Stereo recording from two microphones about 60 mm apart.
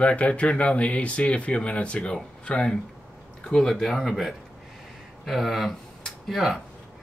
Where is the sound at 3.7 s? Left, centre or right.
Centre.